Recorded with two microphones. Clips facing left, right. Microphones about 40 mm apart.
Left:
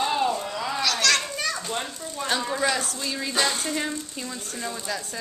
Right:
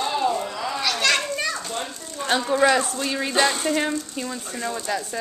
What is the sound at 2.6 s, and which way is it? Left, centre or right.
Speech, right.